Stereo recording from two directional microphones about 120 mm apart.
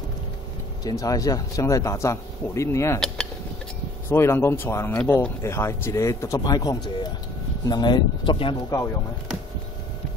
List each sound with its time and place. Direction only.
0.8 s speech: 30° left (ahead or behind)
4.1 s speech: 20° left (ahead or behind); by 8.5 s 45° left (ahead or behind)